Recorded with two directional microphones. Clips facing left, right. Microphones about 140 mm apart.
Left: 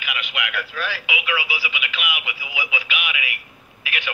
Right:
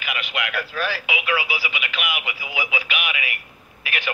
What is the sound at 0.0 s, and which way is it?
Speech, 45° right (ahead or behind).